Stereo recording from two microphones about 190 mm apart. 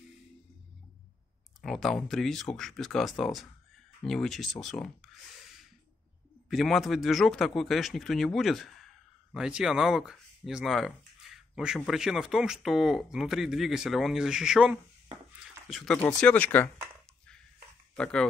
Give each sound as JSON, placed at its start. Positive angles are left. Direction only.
{"t": 1.6, "sound": "a man's voice", "side_deg": 0}
{"t": 6.5, "sound": "a man's voice", "side_deg": 0}
{"t": 17.9, "sound": "speech", "side_deg": 5}